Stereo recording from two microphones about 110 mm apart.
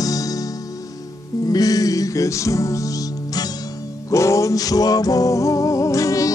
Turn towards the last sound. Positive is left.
turn(degrees=30)  # may be behind; listen again after turning